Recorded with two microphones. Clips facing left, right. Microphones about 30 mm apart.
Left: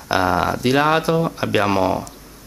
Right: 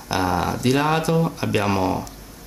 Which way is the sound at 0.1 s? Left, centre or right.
Centre.